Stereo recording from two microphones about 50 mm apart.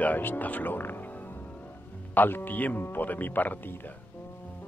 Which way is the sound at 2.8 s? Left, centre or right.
Left.